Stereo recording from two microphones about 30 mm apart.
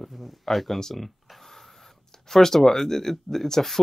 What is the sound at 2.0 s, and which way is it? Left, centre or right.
Speech, centre.